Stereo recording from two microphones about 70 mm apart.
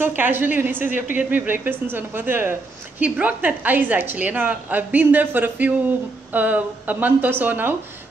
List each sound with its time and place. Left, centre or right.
0.0 s a woman's voice: right